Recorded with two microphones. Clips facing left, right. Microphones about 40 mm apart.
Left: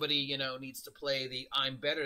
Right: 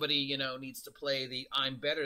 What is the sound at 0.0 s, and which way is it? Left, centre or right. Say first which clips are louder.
Speech: right 1 dB; centre.